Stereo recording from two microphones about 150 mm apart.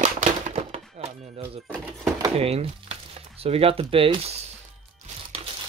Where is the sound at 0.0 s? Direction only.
50° right (ahead or behind).